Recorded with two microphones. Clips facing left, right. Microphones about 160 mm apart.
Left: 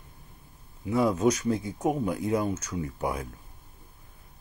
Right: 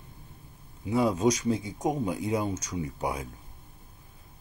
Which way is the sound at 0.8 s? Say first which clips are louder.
Left 1 dB; 25° right (ahead or behind).